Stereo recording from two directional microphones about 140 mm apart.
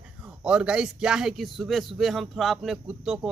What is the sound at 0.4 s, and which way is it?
Speech, 5° right (ahead or behind).